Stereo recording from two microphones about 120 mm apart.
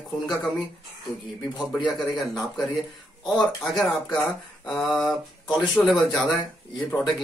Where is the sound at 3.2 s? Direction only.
30° left (ahead or behind).